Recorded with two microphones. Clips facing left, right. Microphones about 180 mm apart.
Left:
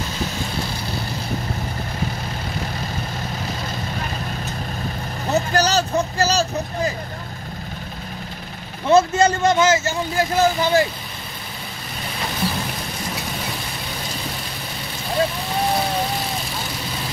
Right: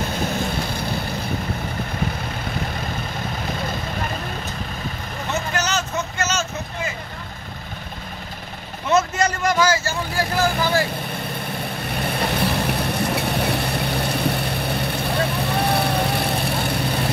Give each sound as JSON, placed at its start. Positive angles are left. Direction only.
{"t": 5.3, "sound": "vehicle", "side_deg": 35}
{"t": 8.8, "sound": "speech", "side_deg": 30}
{"t": 11.9, "sound": "vehicle", "side_deg": -60}